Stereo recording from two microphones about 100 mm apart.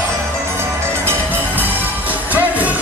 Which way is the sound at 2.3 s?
15° right (ahead or behind).